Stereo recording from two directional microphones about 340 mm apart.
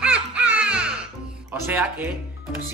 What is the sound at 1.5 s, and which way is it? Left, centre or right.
Speech, centre.